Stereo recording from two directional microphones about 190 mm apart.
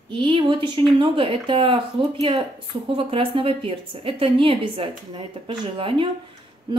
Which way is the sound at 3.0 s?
30° right (ahead or behind).